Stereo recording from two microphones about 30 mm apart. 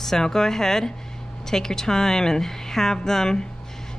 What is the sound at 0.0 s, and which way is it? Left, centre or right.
A woman's voice, centre.